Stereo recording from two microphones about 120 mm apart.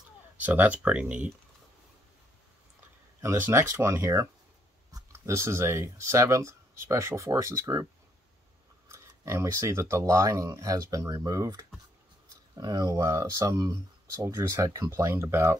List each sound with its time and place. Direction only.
0.5 s speech: 10° right (ahead or behind)
3.2 s speech: 25° right (ahead or behind)
8.8 s speech: 25° right (ahead or behind)